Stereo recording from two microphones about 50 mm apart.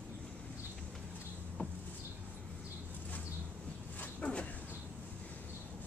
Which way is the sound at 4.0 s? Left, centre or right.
Left.